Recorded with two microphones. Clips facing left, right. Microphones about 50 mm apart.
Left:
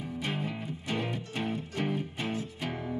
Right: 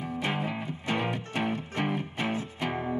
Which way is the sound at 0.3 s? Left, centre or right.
Right.